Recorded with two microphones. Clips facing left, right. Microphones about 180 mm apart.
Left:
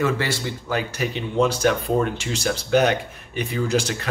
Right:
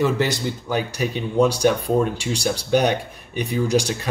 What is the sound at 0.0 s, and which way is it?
Speech, 15° right (ahead or behind).